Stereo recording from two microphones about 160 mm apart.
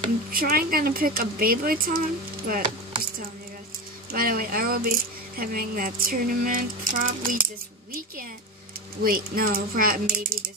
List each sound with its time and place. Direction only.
0.3 s speech: 65° right (ahead or behind)
4.1 s speech: 65° right (ahead or behind)
9.0 s speech: 65° right (ahead or behind)